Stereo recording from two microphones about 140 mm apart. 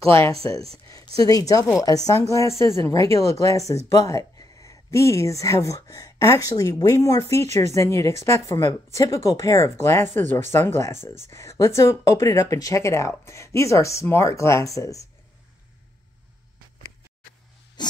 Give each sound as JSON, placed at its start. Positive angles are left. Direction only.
{"t": 0.1, "sound": "speech", "side_deg": 20}
{"t": 7.4, "sound": "speech", "side_deg": -50}
{"t": 7.7, "sound": "speech", "side_deg": 20}
{"t": 17.8, "sound": "a sound", "side_deg": 30}